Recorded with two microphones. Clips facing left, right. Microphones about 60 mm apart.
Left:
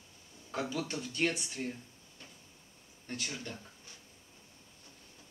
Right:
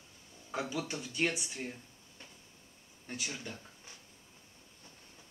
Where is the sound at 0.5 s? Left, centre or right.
Centre.